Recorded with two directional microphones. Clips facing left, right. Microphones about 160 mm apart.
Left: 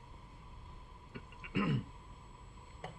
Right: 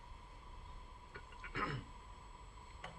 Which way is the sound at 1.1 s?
15° left (ahead or behind).